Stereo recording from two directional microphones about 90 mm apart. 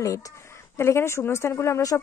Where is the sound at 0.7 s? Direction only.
30° left (ahead or behind).